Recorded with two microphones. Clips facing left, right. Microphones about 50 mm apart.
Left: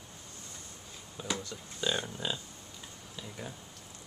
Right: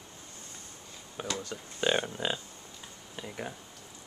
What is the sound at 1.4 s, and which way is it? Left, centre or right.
Speech, right.